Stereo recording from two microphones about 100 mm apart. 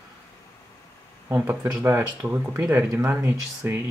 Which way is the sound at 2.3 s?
25° right (ahead or behind).